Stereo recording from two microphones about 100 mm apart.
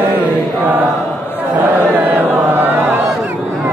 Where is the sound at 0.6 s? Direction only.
20° right (ahead or behind).